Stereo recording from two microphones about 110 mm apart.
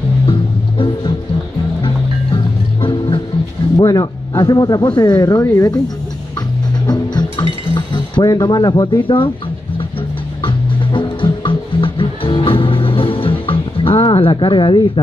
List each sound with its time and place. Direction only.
0.3 s music: 50° left (ahead or behind)
2.3 s music: 50° left (ahead or behind)
3.7 s speech: 35° left (ahead or behind)
6.9 s chink: 40° left (ahead or behind)
10.4 s music: 50° left (ahead or behind)